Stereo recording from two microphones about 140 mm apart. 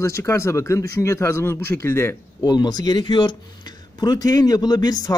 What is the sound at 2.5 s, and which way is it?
A man's voice, 30° left (ahead or behind).